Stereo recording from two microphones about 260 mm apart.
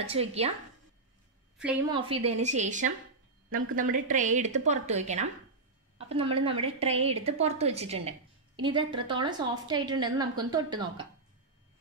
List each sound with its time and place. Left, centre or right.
0.0 s a woman's voice: right
1.9 s a woman's voice: right